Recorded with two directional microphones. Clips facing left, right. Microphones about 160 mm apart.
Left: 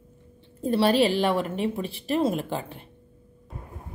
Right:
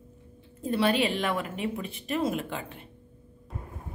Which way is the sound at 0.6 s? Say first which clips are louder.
Left 4 dB; 35° left (ahead or behind).